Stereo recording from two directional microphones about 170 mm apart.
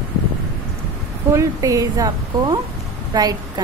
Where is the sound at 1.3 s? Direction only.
20° right (ahead or behind).